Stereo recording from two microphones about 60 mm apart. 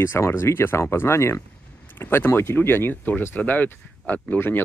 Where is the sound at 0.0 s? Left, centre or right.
Left.